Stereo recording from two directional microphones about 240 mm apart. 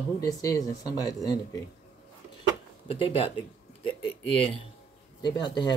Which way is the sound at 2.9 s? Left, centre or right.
Left.